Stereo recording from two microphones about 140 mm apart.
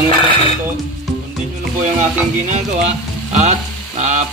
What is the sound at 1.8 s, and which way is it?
Speech, 55° right (ahead or behind).